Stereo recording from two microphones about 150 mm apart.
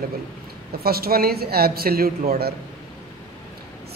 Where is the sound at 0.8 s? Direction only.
90° right.